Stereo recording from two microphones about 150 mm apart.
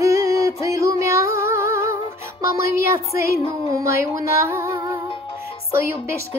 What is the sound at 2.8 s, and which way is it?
Speech, 20° right (ahead or behind).